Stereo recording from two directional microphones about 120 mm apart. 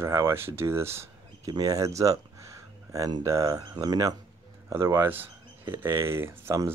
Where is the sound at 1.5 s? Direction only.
30° right (ahead or behind).